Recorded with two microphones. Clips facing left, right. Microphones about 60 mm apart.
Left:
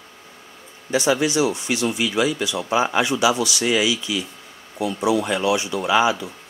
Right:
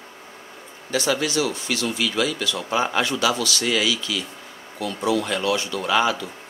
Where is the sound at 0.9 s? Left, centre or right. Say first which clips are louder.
Left 3 dB; centre.